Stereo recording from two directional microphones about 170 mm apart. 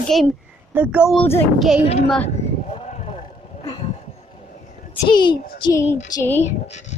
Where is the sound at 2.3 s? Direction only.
40° left (ahead or behind).